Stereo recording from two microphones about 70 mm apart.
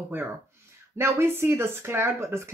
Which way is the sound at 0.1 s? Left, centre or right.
Right.